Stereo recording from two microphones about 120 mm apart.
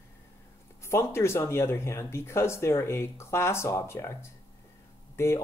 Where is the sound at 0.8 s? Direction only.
20° left (ahead or behind).